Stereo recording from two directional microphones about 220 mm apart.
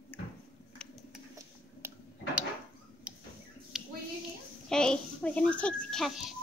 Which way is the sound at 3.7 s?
Centre (ahead or behind).